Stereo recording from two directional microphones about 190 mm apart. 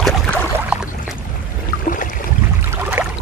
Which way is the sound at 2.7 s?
10° right (ahead or behind).